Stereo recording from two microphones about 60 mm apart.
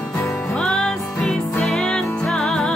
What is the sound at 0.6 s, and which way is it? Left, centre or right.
Music, centre.